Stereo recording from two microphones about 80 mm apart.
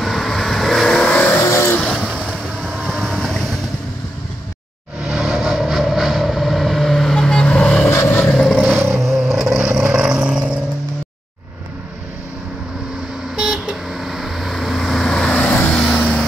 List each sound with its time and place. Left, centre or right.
0.0 s vehicle: centre
1.5 s vehicle: left
2.0 s vehicle: centre
2.6 s boat: centre
5.0 s vehicle: centre
7.9 s vehicle: left
8.3 s vehicle: centre
8.5 s vehicle: centre
13.4 s vehicle: centre